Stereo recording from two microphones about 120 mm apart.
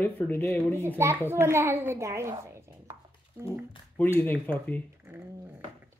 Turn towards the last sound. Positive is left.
turn(degrees=10)  # may be behind; listen again after turning